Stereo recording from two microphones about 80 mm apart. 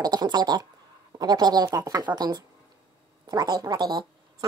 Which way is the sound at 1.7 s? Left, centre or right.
Right.